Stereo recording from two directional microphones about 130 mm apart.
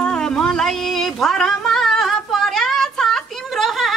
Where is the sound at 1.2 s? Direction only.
5° left (ahead or behind).